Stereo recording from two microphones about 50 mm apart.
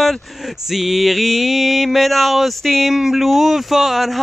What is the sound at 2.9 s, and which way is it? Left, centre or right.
Speech, centre.